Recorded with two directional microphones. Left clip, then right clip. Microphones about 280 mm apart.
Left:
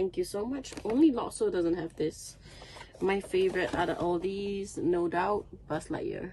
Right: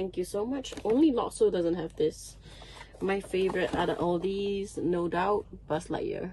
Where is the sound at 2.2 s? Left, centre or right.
Centre.